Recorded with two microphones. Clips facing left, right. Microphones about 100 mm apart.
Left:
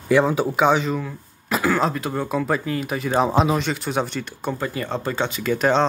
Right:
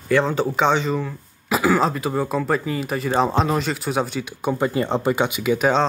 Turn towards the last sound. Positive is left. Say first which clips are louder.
# right 1 dB
turn(degrees=-5)  # may be behind; listen again after turning